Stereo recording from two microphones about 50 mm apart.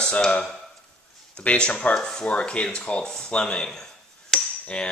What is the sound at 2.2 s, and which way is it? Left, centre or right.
Speech, left.